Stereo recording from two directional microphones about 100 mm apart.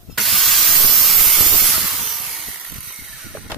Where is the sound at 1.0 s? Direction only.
Centre (ahead or behind).